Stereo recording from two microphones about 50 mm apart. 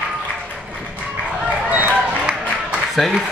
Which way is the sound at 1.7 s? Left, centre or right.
Right.